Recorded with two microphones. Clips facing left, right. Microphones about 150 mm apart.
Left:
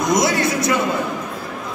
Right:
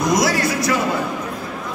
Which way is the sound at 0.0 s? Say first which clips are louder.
Even; 20° left (ahead or behind).